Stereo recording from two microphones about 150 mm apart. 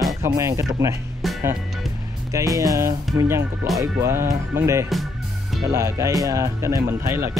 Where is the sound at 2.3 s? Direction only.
20° right (ahead or behind).